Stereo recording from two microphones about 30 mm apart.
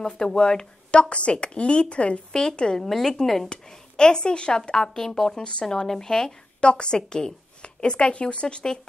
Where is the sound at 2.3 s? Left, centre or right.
Left.